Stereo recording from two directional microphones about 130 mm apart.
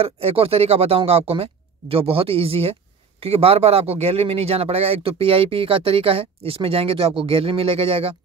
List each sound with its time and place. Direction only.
0.0 s speech: 50° right (ahead or behind)